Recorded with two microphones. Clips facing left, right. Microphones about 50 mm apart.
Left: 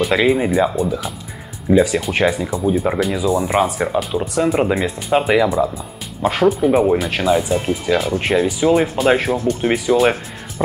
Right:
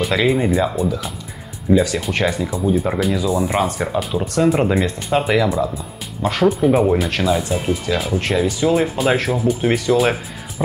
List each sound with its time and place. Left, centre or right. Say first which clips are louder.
0.0 s speech: left 2 dB; centre
1.7 s speech: left 2 dB; centre